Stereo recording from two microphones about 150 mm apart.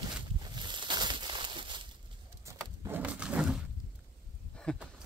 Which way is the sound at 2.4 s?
15° right (ahead or behind).